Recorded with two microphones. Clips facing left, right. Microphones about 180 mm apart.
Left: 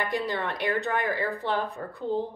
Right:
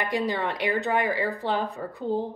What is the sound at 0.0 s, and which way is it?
A woman's voice, 15° right (ahead or behind).